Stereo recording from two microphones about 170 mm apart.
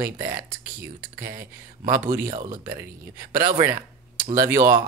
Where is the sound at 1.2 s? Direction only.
55° right (ahead or behind).